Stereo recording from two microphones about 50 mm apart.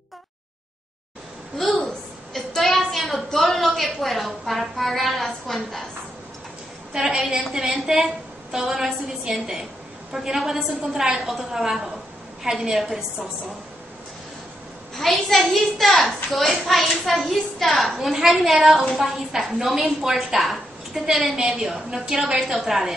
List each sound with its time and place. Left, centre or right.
1.9 s a woman's voice: centre
6.9 s a woman's voice: centre
15.0 s a child's voice: centre